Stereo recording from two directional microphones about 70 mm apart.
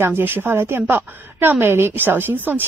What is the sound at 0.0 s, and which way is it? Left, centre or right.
A woman's voice, right.